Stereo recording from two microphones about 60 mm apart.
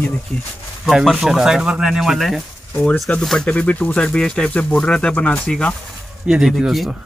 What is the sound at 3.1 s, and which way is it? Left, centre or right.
Speech, left.